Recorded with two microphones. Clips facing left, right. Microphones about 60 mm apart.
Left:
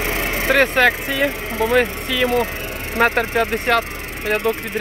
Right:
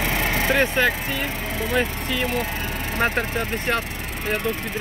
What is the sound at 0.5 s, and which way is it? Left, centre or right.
Speech, left.